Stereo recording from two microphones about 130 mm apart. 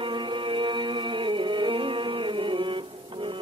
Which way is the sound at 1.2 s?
40° right (ahead or behind).